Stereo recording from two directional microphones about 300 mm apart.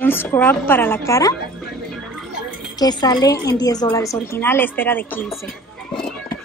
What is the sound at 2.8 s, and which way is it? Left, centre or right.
A woman's voice, centre.